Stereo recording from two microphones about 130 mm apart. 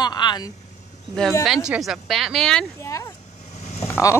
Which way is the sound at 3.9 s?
25° left (ahead or behind).